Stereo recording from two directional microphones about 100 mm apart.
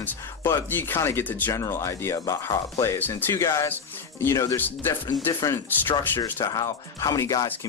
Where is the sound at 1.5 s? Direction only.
30° left (ahead or behind).